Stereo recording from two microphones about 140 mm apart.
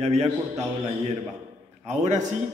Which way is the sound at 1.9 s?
55° right (ahead or behind).